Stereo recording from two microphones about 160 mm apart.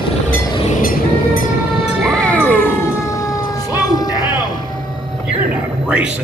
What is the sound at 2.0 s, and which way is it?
Music, 10° left (ahead or behind).